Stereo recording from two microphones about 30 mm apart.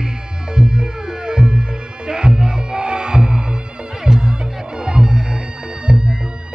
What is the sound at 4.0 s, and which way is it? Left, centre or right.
Music, right.